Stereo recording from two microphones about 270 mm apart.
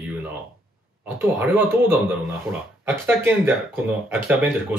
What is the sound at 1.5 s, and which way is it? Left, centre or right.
Speech, centre.